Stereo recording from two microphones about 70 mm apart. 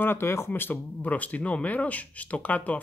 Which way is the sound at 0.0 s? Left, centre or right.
Left.